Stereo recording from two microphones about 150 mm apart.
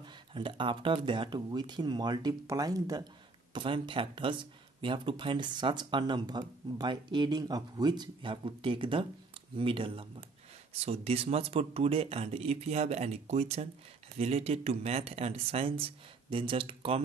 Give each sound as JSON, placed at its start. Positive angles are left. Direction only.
{"t": 0.0, "sound": "speech", "side_deg": -35}